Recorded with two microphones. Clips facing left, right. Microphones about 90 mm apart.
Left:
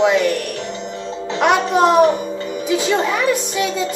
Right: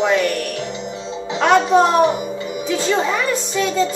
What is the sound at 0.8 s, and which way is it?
Music, 15° right (ahead or behind).